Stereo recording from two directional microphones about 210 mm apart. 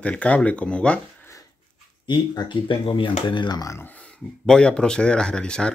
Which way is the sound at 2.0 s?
20° left (ahead or behind).